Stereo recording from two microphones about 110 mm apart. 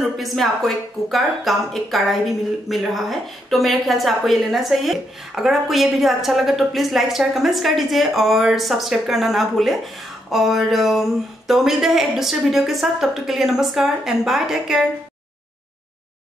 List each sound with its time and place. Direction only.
0.2 s speech: centre (ahead or behind)